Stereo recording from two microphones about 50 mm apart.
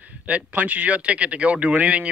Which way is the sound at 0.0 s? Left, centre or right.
Right.